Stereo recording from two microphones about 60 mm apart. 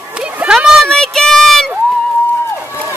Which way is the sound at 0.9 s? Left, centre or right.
Centre.